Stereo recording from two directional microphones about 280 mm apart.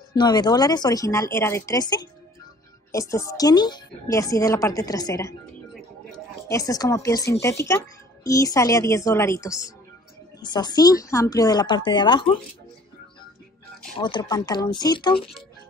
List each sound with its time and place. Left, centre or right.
0.1 s a woman's voice: centre
13.9 s a woman's voice: centre